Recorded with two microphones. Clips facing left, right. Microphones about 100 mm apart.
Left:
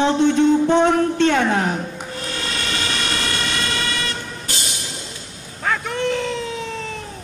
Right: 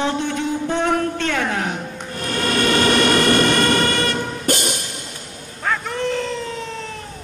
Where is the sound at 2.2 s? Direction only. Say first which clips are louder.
Right 9 dB; 50° right (ahead or behind).